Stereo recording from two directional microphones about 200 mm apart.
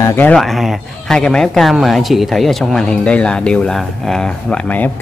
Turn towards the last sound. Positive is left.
turn(degrees=5)  # may be behind; listen again after turning